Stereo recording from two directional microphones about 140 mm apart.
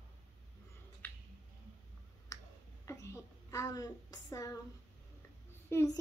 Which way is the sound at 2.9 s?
20° left (ahead or behind).